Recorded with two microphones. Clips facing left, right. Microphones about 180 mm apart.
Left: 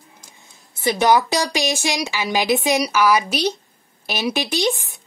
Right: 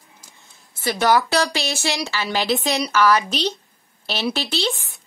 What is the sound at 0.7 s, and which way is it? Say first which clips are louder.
A woman's voice: left 2 dB; 15° left (ahead or behind).